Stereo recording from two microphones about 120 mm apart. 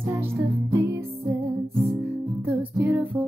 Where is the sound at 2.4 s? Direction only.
15° right (ahead or behind).